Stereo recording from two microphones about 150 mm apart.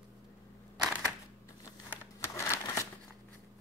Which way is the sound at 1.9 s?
15° left (ahead or behind).